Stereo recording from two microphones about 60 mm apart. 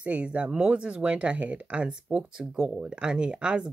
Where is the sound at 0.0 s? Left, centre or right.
Centre.